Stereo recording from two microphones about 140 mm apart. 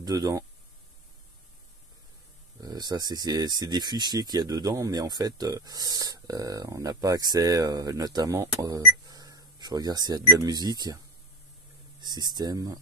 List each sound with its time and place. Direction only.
0.0 s speech: 25° right (ahead or behind)
2.6 s speech: 30° right (ahead or behind)
12.0 s speech: 30° right (ahead or behind)